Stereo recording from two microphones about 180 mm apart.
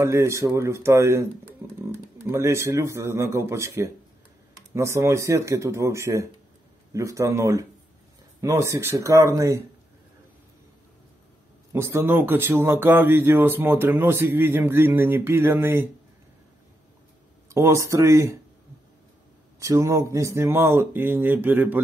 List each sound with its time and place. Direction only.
0.0 s speech: 15° right (ahead or behind)
2.2 s speech: 15° right (ahead or behind)
11.7 s speech: 15° right (ahead or behind)
17.5 s speech: 15° right (ahead or behind)
19.6 s speech: 15° right (ahead or behind)